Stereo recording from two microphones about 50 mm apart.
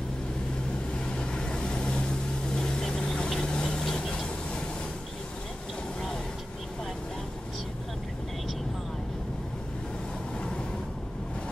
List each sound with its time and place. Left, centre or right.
1.0 s vehicle: centre